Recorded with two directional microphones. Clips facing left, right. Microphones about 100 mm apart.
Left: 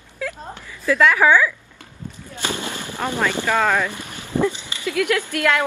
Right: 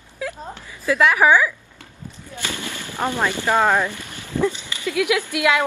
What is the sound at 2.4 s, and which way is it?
Fireworks, 20° left (ahead or behind).